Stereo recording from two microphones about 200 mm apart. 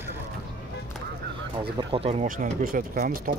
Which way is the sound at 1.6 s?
25° right (ahead or behind).